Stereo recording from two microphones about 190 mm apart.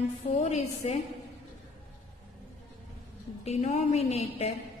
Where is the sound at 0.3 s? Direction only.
35° left (ahead or behind).